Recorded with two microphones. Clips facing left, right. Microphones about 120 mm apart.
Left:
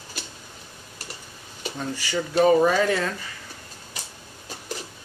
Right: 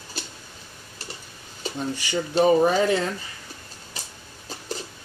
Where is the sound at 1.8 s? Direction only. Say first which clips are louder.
Right 1 dB; 20° right (ahead or behind).